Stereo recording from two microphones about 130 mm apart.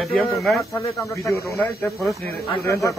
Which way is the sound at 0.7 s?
25° left (ahead or behind).